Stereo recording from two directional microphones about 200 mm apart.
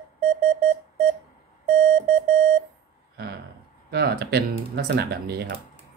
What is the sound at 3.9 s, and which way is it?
Speech, 50° right (ahead or behind).